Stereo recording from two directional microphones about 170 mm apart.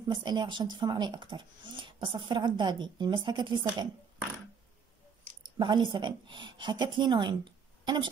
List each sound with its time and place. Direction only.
0.1 s speech: 25° right (ahead or behind)
5.6 s a woman's voice: 30° right (ahead or behind)